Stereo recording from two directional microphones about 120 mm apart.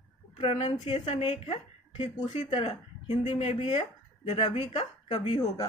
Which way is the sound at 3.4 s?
55° left (ahead or behind).